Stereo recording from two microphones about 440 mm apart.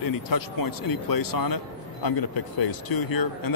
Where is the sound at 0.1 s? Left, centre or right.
Left.